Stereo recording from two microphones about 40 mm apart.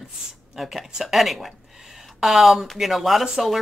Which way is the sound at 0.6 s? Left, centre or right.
Centre.